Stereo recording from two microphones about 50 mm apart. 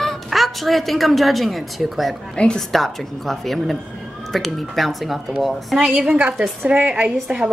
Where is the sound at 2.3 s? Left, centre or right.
Centre.